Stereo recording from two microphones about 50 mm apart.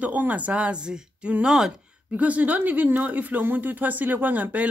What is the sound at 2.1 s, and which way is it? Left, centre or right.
Speech, right.